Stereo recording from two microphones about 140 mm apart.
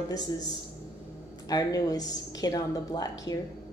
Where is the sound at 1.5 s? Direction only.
25° left (ahead or behind).